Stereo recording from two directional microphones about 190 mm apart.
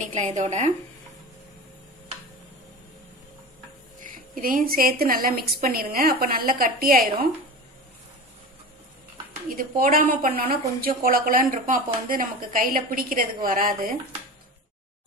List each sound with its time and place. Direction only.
0.0 s speech: 40° right (ahead or behind)
4.0 s a woman's voice: 45° right (ahead or behind)
9.6 s a woman's voice: 50° right (ahead or behind)